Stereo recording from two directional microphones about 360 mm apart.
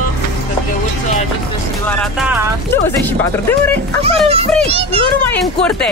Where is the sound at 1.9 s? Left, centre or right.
Centre.